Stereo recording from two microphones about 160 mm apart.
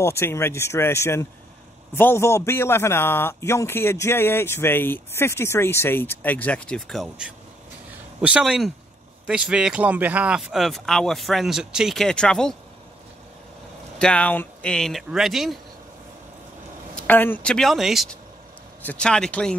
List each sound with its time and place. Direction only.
0.0 s a man's voice: 15° left (ahead or behind)
13.9 s speech: 5° left (ahead or behind)
16.9 s speech: 10° left (ahead or behind)